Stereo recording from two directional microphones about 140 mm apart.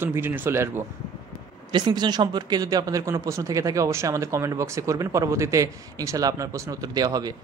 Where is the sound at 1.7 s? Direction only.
30° right (ahead or behind).